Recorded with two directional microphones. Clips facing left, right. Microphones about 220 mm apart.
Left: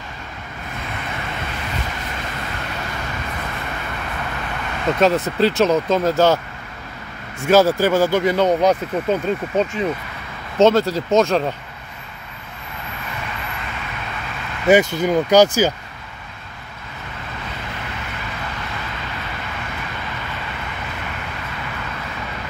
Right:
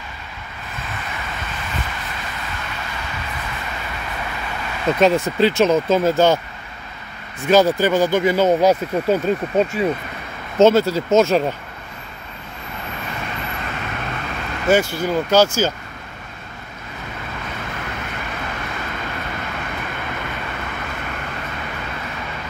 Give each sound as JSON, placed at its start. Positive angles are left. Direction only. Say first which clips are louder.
{"t": 4.9, "sound": "speech", "louder": "right 1 dB", "side_deg": 0}
{"t": 7.4, "sound": "speech", "louder": "even", "side_deg": 5}
{"t": 14.7, "sound": "speech", "louder": "left 3 dB", "side_deg": 20}